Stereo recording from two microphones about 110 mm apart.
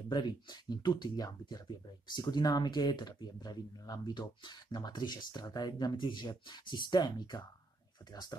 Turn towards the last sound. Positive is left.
turn(degrees=40)  # may be behind; listen again after turning